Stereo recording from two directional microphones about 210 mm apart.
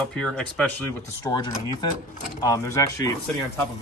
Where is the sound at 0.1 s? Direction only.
5° left (ahead or behind).